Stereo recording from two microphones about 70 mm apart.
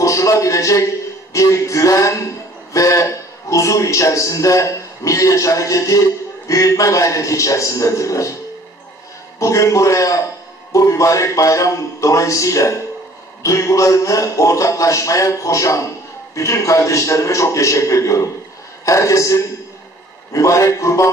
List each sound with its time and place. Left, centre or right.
0.0 s music: left
1.3 s a man's voice: left
9.4 s a man's voice: left